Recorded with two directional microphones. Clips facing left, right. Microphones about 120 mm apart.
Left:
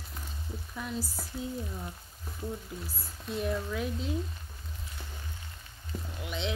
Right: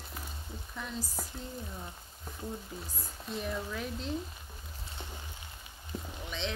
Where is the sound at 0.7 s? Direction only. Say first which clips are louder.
Left 2 dB; 5° left (ahead or behind).